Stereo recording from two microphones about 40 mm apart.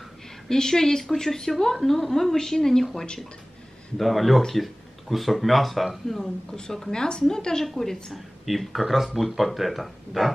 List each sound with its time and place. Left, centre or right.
0.5 s a woman's voice: centre
6.2 s a woman's voice: centre